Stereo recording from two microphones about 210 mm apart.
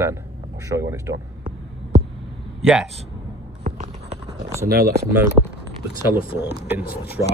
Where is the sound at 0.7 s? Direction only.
15° right (ahead or behind).